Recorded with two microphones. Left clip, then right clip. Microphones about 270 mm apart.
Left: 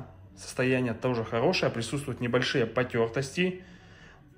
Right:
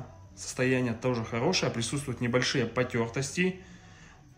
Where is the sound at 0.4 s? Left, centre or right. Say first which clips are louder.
Left 1 dB; centre.